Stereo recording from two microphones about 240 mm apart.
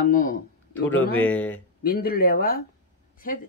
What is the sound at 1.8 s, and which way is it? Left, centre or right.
Speech, left.